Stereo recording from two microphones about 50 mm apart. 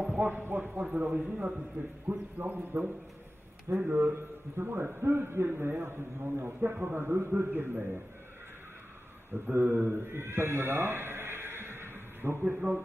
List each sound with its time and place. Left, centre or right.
0.1 s clip-clop: right
0.6 s speech: right
1.2 s a man's voice: centre
2.0 s speech: right
3.7 s a man's voice: right
9.3 s a man's voice: right